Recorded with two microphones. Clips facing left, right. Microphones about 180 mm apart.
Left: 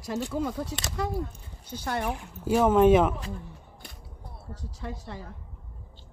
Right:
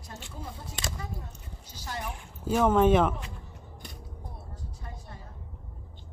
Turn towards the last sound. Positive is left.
turn(degrees=85)